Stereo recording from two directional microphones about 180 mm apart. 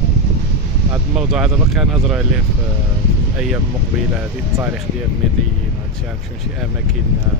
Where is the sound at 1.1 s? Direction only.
5° right (ahead or behind).